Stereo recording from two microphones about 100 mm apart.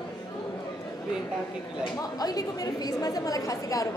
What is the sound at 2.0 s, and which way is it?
A woman's voice, 40° left (ahead or behind).